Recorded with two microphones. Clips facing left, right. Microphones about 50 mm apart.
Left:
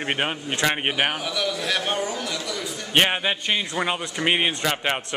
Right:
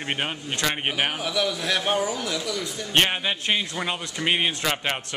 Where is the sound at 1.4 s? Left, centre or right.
Centre.